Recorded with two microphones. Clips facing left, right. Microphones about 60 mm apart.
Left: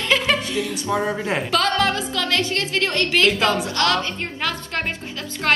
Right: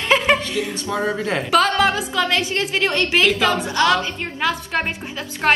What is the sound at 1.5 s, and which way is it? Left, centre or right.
A woman's voice, centre.